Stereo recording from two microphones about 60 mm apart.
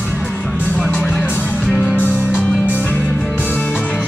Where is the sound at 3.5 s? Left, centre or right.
Left.